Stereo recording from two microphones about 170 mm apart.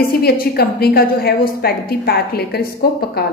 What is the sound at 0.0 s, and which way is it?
A woman's voice, 60° left (ahead or behind).